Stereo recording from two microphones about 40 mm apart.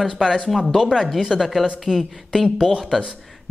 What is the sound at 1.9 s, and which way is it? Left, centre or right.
Speech, centre.